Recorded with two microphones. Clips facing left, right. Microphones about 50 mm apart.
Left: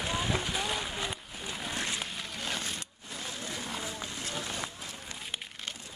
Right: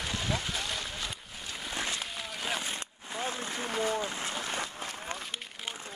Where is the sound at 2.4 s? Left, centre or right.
Centre.